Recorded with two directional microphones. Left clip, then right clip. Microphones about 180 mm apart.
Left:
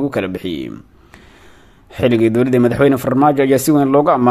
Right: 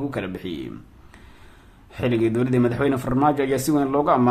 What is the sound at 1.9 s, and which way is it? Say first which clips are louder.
Speech: left 8 dB; 35° left (ahead or behind).